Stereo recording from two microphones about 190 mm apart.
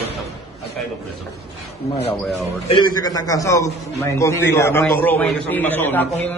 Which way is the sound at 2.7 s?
20° left (ahead or behind).